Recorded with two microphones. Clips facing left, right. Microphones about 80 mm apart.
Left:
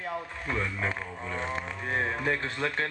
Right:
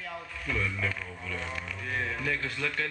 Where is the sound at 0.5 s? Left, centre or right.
Left.